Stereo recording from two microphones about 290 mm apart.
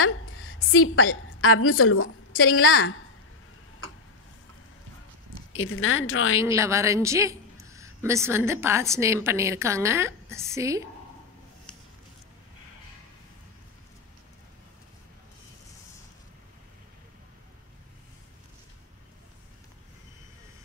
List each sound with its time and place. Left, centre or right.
0.0 s a woman's voice: left
5.5 s speech: left
6.4 s a woman's voice: centre